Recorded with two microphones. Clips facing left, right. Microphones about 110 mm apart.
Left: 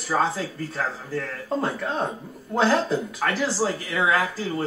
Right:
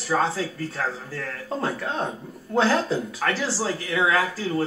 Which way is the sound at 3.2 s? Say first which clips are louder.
Left 2 dB; centre (ahead or behind).